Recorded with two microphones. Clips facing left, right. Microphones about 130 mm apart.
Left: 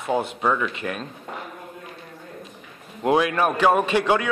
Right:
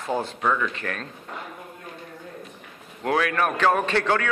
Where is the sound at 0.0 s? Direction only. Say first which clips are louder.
Left 2 dB; 15° left (ahead or behind).